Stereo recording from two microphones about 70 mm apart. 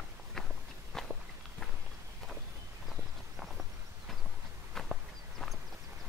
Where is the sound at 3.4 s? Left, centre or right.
Centre.